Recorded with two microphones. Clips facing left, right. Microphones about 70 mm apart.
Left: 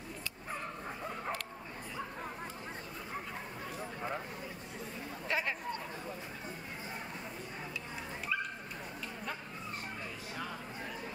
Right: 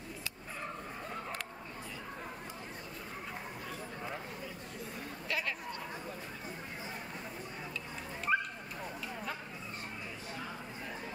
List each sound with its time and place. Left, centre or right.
5.3 s chatter: left
8.3 s dog: right